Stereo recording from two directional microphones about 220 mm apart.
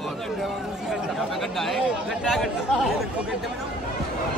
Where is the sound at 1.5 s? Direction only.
Centre (ahead or behind).